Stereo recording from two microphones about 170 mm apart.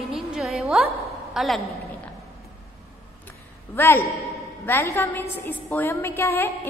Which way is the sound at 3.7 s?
15° left (ahead or behind).